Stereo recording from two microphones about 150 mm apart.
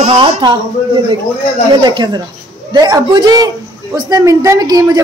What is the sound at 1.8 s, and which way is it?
Speech, 30° right (ahead or behind).